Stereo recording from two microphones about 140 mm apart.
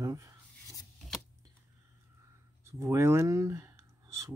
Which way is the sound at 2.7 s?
20° right (ahead or behind).